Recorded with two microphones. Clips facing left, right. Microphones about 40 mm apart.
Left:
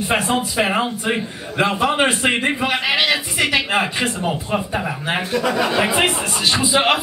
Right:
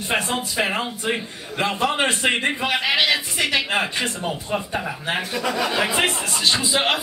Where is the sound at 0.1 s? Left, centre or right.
Centre.